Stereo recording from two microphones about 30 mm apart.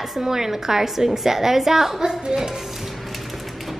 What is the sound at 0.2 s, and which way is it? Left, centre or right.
A woman's voice, centre.